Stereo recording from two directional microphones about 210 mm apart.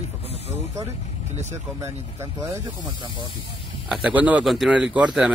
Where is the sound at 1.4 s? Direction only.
30° right (ahead or behind).